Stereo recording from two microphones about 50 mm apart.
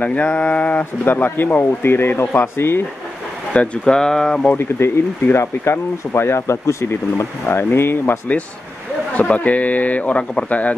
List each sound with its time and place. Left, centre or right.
0.0 s speech: left
1.0 s speech: left
3.5 s speech: left
4.6 s speech: left
9.1 s speech: left